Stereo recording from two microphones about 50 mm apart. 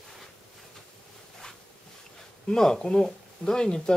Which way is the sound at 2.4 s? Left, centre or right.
Centre.